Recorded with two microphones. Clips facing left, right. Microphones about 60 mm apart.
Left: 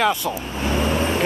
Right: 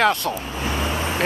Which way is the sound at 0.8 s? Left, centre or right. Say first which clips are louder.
Left 4 dB; left.